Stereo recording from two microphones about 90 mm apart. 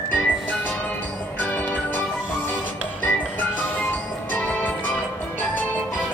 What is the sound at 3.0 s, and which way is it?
Music, 20° left (ahead or behind).